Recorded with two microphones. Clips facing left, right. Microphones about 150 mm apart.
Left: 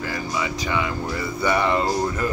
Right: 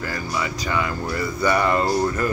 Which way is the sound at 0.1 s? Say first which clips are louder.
Left 1 dB; 20° left (ahead or behind).